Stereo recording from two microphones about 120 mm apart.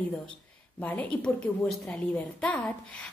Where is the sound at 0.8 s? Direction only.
10° left (ahead or behind).